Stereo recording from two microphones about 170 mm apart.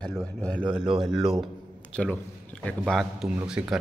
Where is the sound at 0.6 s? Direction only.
30° right (ahead or behind).